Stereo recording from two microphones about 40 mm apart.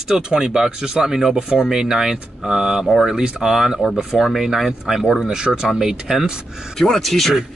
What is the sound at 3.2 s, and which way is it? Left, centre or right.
Speech, centre.